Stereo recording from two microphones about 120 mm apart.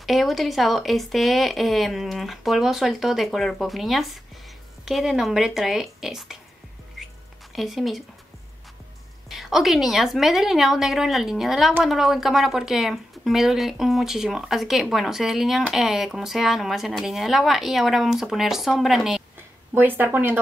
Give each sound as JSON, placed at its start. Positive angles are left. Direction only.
{"t": 0.0, "sound": "speech", "side_deg": 0}
{"t": 7.5, "sound": "speech", "side_deg": 0}
{"t": 9.3, "sound": "speech", "side_deg": 0}
{"t": 19.7, "sound": "speech", "side_deg": -15}